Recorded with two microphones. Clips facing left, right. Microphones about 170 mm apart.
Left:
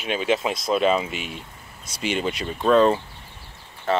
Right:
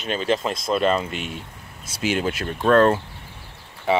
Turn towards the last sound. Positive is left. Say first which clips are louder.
# right 2 dB
turn(degrees=-15)  # may be behind; listen again after turning